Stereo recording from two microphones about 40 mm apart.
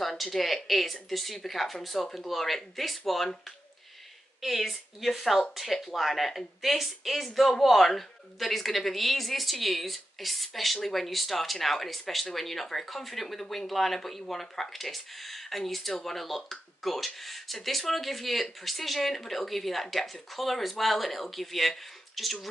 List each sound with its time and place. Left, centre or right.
0.0 s speech: centre
4.4 s speech: centre